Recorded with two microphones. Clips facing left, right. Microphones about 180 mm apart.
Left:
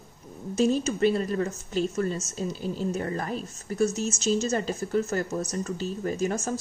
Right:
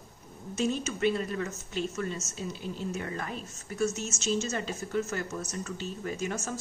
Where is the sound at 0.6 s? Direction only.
35° left (ahead or behind).